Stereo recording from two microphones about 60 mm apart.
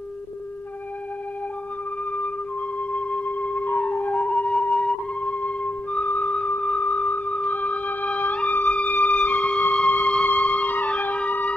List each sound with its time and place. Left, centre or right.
2.9 s flute: left
6.3 s music: left